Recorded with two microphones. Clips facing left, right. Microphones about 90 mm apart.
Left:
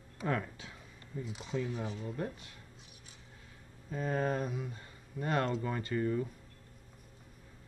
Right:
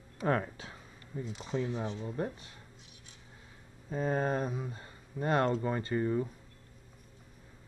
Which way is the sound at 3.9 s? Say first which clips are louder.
Right 2 dB; 35° right (ahead or behind).